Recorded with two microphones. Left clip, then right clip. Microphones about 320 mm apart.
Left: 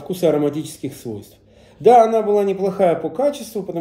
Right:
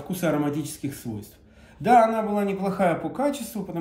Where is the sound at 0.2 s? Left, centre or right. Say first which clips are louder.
Left 8 dB; centre.